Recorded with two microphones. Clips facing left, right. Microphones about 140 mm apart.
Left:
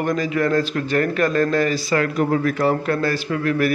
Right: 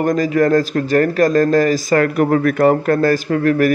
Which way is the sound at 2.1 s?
60° right (ahead or behind).